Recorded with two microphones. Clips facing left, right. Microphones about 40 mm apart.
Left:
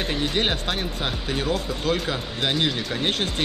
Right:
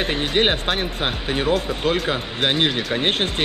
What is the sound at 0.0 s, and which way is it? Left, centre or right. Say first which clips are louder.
Speech: right 4 dB; right.